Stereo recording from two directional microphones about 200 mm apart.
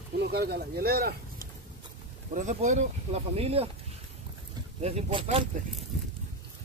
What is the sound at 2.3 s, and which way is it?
Speech, 40° right (ahead or behind).